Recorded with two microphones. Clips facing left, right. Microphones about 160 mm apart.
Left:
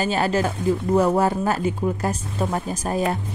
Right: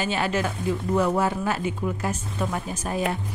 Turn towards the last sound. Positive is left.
turn(degrees=40)  # may be behind; listen again after turning